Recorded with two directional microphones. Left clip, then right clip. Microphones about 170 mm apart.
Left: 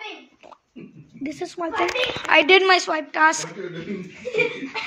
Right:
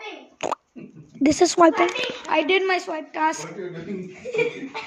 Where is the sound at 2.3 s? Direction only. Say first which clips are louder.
Left 6 dB; 25° right (ahead or behind).